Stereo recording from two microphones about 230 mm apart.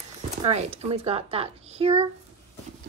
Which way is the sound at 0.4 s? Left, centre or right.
Right.